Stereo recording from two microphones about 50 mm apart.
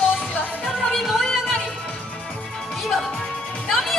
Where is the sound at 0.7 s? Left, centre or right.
Centre.